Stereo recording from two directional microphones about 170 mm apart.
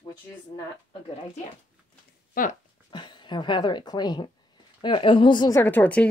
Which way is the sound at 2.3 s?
55° left (ahead or behind).